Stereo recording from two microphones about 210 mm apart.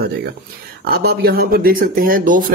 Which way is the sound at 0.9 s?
45° right (ahead or behind).